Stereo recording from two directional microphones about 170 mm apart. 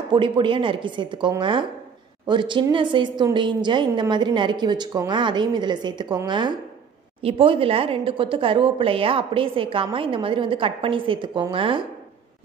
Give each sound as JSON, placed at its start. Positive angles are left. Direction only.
{"t": 0.1, "sound": "a woman's voice", "side_deg": -30}